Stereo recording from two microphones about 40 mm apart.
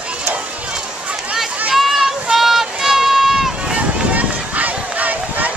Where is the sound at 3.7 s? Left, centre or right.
Right.